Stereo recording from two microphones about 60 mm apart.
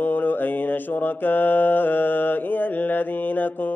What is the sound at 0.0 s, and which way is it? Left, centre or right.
Mantra, left.